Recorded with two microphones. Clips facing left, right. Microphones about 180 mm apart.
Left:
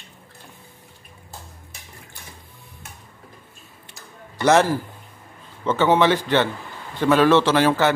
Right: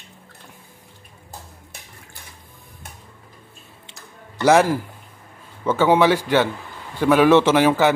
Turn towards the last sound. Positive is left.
turn(degrees=-15)  # may be behind; listen again after turning